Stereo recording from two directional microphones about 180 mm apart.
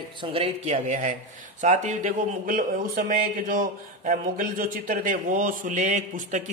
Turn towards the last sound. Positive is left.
turn(degrees=-40)  # may be behind; listen again after turning